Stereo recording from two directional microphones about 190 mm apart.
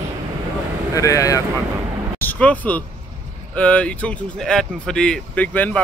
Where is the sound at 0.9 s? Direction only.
15° left (ahead or behind).